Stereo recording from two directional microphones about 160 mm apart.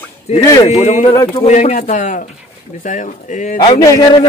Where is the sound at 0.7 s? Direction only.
45° left (ahead or behind).